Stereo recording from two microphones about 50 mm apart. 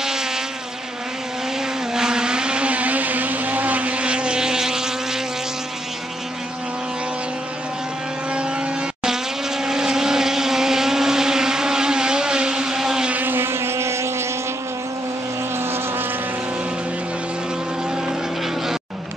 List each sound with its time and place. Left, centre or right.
0.0 s insect: centre
2.0 s vehicle: centre
8.3 s vehicle: right
13.1 s motorboat: right
15.5 s vehicle: right
18.0 s vehicle: centre